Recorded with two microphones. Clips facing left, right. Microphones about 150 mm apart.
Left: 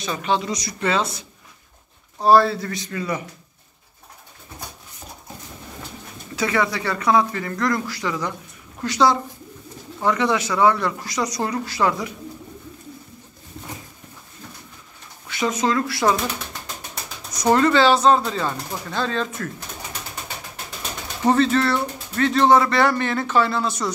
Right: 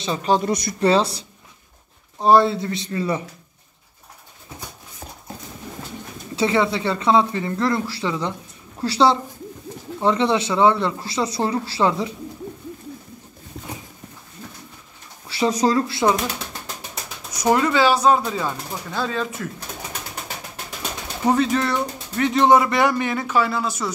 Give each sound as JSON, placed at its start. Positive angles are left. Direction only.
{"t": 0.0, "sound": "speech", "side_deg": -25}
{"t": 0.3, "sound": "speech", "side_deg": -50}
{"t": 0.7, "sound": "speech", "side_deg": -35}
{"t": 2.1, "sound": "speech", "side_deg": -20}
{"t": 6.3, "sound": "speech", "side_deg": -25}
{"t": 15.2, "sound": "speech", "side_deg": -35}
{"t": 17.3, "sound": "speech", "side_deg": -10}
{"t": 21.3, "sound": "speech", "side_deg": -10}